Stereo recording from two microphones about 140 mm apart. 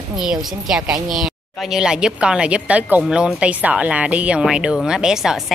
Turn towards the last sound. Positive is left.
turn(degrees=0)  # may be behind; listen again after turning